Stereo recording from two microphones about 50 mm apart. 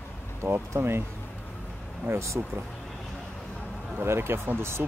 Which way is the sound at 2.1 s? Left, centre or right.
Right.